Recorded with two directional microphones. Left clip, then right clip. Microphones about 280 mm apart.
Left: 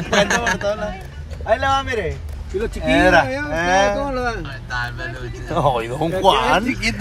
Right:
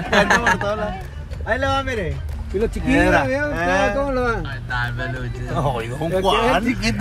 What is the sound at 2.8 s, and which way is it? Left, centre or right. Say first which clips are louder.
Speech: left 4 dB; left.